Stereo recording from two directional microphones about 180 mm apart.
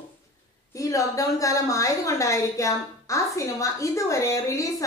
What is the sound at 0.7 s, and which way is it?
A woman's voice, 20° left (ahead or behind).